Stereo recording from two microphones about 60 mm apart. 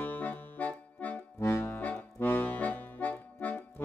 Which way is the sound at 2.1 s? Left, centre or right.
Left.